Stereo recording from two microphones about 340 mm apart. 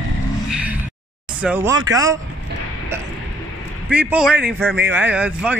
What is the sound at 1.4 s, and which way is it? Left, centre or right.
Speech, centre.